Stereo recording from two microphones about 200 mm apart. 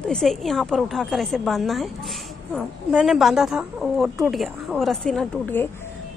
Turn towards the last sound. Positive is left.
turn(degrees=5)  # may be behind; listen again after turning